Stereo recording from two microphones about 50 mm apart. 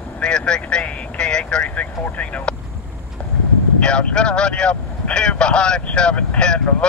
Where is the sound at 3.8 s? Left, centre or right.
Left.